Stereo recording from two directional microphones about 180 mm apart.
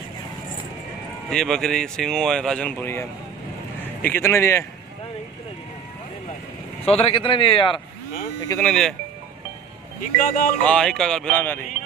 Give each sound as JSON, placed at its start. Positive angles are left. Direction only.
{"t": 1.3, "sound": "a man's voice", "side_deg": 5}
{"t": 7.0, "sound": "a man's voice", "side_deg": 30}
{"t": 8.5, "sound": "speech", "side_deg": 10}
{"t": 10.1, "sound": "speech", "side_deg": 50}
{"t": 10.6, "sound": "speech", "side_deg": 5}